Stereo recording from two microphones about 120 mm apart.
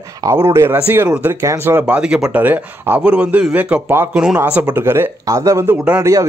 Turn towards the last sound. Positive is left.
turn(degrees=-25)  # may be behind; listen again after turning